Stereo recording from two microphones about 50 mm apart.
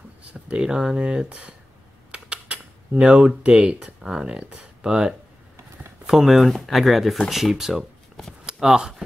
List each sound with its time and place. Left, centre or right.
0.3 s speech: centre
2.0 s typing: right
3.4 s speech: centre